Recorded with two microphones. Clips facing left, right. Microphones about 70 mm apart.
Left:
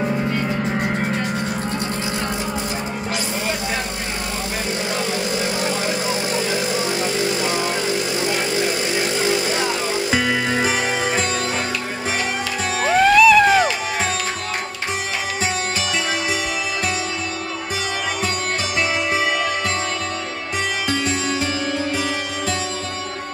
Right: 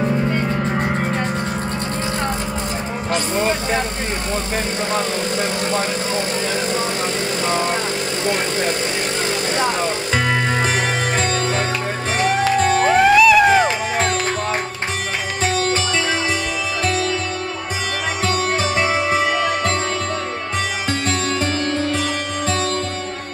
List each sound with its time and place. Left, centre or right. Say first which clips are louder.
0.5 s music: right 1 dB; centre
3.3 s vehicle: right 5 dB; right
6.3 s vehicle: even; centre
9.2 s vehicle: left 2 dB; centre
12.5 s music: right 1 dB; centre
19.0 s music: right 2 dB; centre
21.4 s music: right 2 dB; centre